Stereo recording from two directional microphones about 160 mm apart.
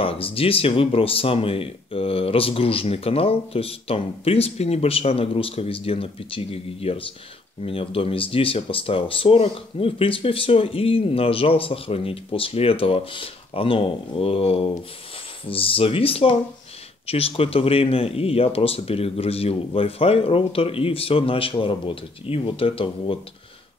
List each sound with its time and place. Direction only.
0.0 s speech: 35° left (ahead or behind)